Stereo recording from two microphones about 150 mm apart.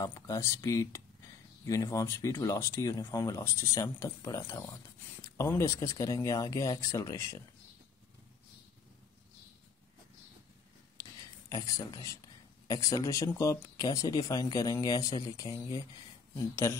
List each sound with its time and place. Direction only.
0.0 s speech: 20° left (ahead or behind)
11.0 s a sound: 20° left (ahead or behind)
12.6 s speech: 25° left (ahead or behind)